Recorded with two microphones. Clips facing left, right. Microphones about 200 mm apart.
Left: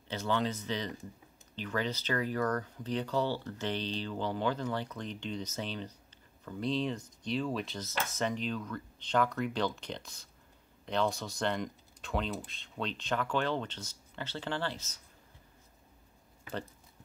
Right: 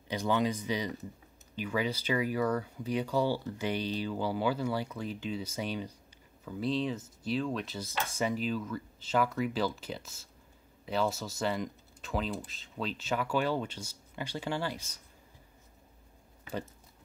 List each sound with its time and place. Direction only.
0.1 s speech: 15° right (ahead or behind)